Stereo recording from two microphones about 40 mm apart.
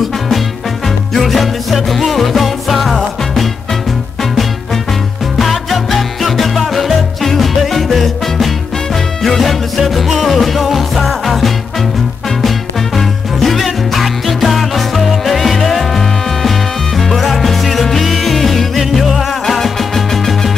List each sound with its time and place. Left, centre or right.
0.8 s music: centre
5.4 s music: centre